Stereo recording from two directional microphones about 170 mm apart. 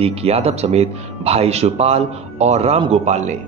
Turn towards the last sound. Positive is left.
turn(degrees=-40)  # may be behind; listen again after turning